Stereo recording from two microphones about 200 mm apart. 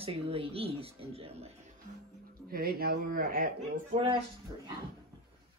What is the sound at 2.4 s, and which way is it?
A man's voice, 50° right (ahead or behind).